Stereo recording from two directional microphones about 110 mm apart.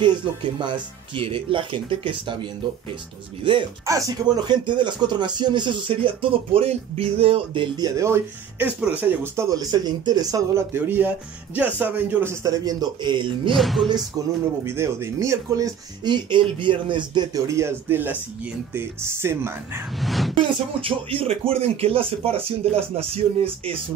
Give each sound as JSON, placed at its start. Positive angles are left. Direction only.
{"t": 0.0, "sound": "speech", "side_deg": -45}
{"t": 3.8, "sound": "speech", "side_deg": -30}
{"t": 4.5, "sound": "speech", "side_deg": -45}
{"t": 7.7, "sound": "speech", "side_deg": -35}
{"t": 10.7, "sound": "speech", "side_deg": -20}
{"t": 12.4, "sound": "speech", "side_deg": -35}
{"t": 13.5, "sound": "speech", "side_deg": 0}
{"t": 14.2, "sound": "speech", "side_deg": -35}
{"t": 14.6, "sound": "speech", "side_deg": -25}
{"t": 17.5, "sound": "speech", "side_deg": -25}
{"t": 20.0, "sound": "speech", "side_deg": 0}
{"t": 20.8, "sound": "speech", "side_deg": -60}